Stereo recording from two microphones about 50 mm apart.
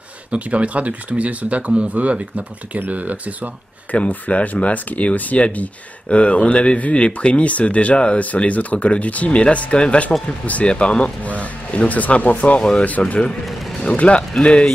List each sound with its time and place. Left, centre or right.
0.3 s speech: right
3.9 s speech: left
13.5 s music: centre
13.8 s speech: left